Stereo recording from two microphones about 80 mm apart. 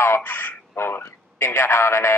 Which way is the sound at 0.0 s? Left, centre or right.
Left.